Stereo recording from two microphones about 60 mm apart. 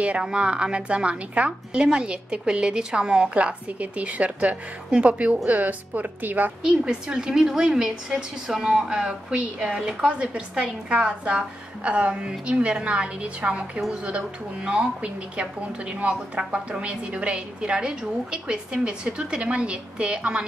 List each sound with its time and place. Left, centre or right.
0.0 s a woman's voice: centre
6.6 s a woman's voice: centre